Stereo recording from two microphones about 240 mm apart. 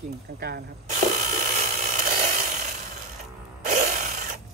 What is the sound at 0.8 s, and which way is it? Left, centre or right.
Tools, right.